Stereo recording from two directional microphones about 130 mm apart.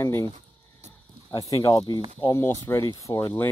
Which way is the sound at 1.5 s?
30° left (ahead or behind).